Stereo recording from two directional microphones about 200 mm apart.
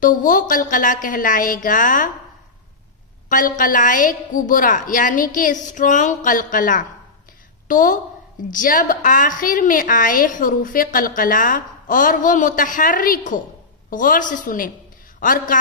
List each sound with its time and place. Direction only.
0.0 s a woman's voice: 40° left (ahead or behind)
3.3 s a woman's voice: 40° left (ahead or behind)